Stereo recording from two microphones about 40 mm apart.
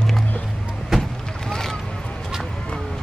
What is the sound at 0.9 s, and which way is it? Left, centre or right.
Vehicle, centre.